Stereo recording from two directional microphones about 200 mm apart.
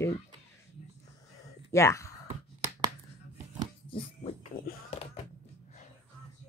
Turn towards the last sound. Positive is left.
turn(degrees=25)  # may be behind; listen again after turning